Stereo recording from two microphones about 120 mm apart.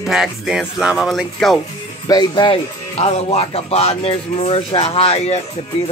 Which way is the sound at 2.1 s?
40° left (ahead or behind).